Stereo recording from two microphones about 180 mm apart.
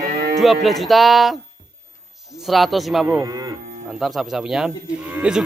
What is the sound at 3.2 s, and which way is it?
Cattle, 20° right (ahead or behind).